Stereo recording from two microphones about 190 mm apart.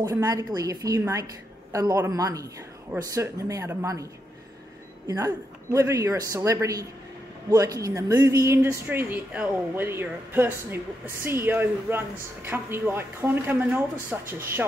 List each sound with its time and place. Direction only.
0.0 s a woman's voice: 15° right (ahead or behind)